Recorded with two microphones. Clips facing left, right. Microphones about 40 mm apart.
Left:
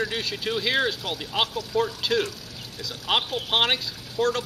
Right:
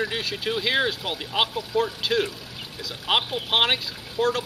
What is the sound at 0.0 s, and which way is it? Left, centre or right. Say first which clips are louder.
Speech: right 1 dB; centre.